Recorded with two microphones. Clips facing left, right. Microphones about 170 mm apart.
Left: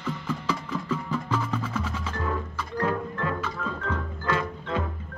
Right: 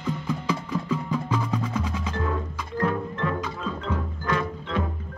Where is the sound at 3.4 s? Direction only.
15° right (ahead or behind).